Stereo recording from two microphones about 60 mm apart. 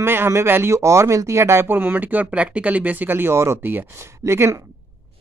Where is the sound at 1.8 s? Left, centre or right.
Right.